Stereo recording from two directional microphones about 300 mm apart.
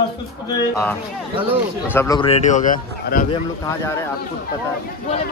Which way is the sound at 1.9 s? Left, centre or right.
Centre.